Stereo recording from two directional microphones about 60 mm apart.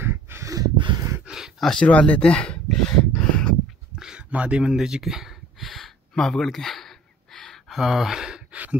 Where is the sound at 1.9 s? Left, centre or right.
Left.